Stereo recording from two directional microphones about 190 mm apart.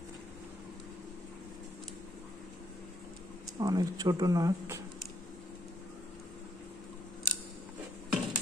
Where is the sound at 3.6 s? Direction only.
20° right (ahead or behind).